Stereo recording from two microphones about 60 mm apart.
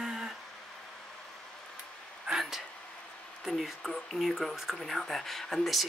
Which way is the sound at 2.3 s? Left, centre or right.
Centre.